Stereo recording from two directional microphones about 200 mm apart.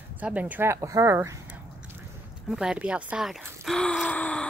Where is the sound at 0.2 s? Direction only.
10° right (ahead or behind).